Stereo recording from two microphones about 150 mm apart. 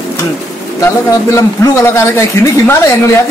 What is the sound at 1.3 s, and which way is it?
A man's voice, 20° left (ahead or behind).